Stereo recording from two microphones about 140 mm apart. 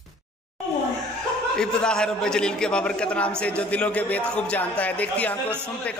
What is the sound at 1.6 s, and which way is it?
A man's voice, 5° left (ahead or behind).